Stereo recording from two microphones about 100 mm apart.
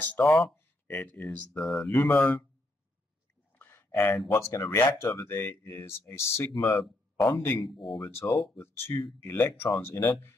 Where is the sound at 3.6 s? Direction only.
20° left (ahead or behind).